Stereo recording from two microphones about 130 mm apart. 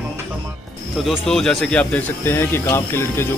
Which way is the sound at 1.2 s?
5° left (ahead or behind).